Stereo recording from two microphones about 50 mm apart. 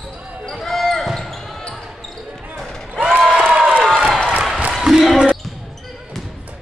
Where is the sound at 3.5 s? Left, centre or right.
Right.